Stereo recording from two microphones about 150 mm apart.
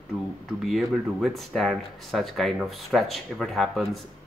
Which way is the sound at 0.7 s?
Centre (ahead or behind).